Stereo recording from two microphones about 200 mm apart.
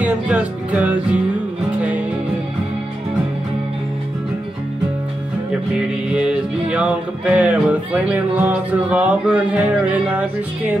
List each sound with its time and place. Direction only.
0.0 s music: 5° right (ahead or behind)
6.1 s music: 5° right (ahead or behind)